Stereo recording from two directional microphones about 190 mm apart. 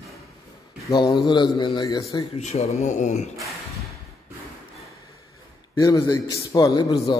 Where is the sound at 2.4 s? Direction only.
35° left (ahead or behind).